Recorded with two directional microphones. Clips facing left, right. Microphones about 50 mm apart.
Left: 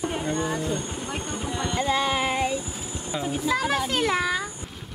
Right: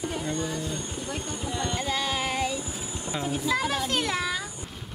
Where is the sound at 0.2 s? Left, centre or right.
Left.